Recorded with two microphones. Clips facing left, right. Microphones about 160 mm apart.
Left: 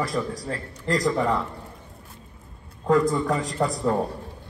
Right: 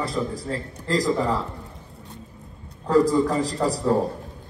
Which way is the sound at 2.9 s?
35° right (ahead or behind).